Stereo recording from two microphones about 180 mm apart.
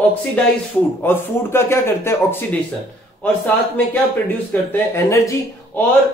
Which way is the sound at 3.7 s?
10° left (ahead or behind).